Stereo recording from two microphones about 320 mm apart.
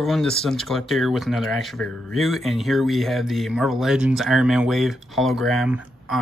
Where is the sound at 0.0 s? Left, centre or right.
Centre.